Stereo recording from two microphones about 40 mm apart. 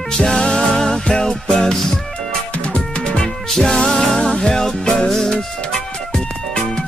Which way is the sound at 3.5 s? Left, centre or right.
Centre.